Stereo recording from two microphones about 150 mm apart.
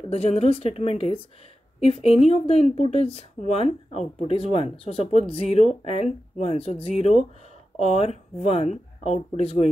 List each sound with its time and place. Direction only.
0.1 s a woman's voice: 45° left (ahead or behind)